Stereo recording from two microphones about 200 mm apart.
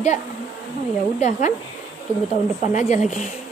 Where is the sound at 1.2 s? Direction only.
35° left (ahead or behind).